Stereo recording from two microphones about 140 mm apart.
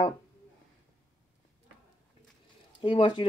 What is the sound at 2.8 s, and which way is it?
Speech, 35° left (ahead or behind).